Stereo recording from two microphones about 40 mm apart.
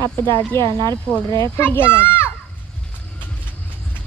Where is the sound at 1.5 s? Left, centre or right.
Left.